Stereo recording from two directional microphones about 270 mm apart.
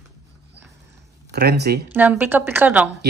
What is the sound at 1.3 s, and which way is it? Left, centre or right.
Speech, right.